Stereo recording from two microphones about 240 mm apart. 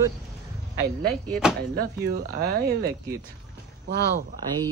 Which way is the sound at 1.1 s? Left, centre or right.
Centre.